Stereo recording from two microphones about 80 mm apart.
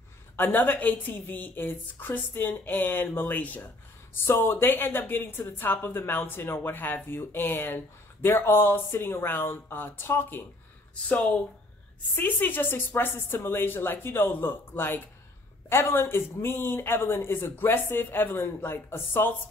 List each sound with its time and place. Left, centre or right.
0.4 s speech: left
12.2 s speech: left